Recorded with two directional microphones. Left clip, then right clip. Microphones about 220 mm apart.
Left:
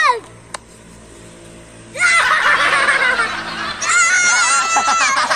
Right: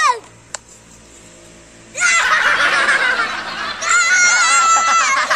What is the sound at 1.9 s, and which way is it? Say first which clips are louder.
Snicker: left 1 dB; 5° left (ahead or behind).